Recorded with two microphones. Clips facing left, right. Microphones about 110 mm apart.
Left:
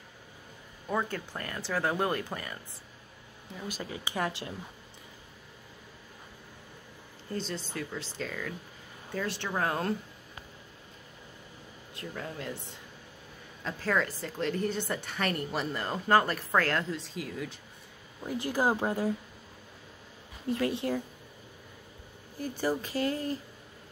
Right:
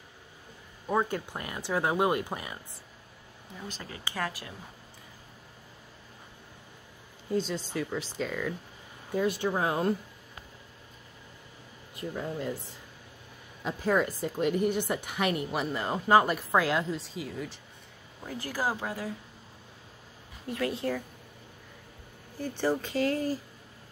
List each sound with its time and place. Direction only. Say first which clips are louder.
0.8 s a woman's voice: right 3 dB; 20° right (ahead or behind)
3.6 s speech: left 3 dB; 15° left (ahead or behind)
7.2 s a woman's voice: right 5 dB; 10° right (ahead or behind)
9.1 s a woman's voice: right 5 dB; 15° right (ahead or behind)
11.9 s a woman's voice: right 5 dB; 10° right (ahead or behind)
13.7 s a woman's voice: right 3 dB; 15° right (ahead or behind)
18.4 s speech: left 4 dB; 20° left (ahead or behind)
20.4 s speech: left 1 dB; 25° left (ahead or behind)
22.8 s speech: right 3 dB; 5° left (ahead or behind)